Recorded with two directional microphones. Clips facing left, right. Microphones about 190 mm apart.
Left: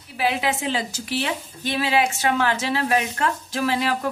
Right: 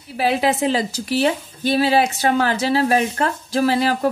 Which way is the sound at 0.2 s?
35° right (ahead or behind).